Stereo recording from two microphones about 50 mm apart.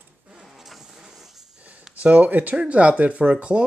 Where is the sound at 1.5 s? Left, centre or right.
Right.